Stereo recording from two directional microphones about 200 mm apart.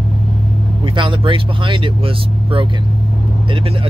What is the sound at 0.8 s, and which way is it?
Speech, 25° right (ahead or behind).